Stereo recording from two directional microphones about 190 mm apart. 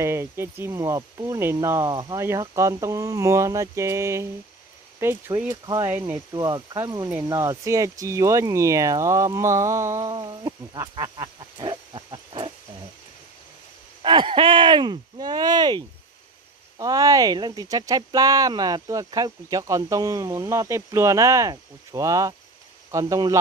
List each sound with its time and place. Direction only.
0.0 s speech: 15° right (ahead or behind)
14.0 s speech: 25° right (ahead or behind)